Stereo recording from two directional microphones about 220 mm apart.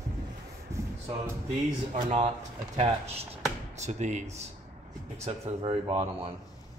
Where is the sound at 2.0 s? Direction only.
30° right (ahead or behind).